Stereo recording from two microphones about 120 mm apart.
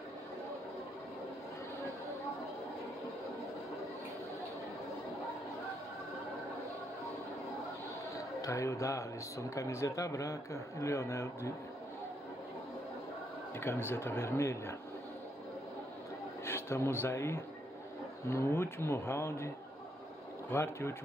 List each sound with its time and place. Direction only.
8.4 s speech: 25° left (ahead or behind)
13.6 s speech: 20° left (ahead or behind)
16.4 s speech: 20° left (ahead or behind)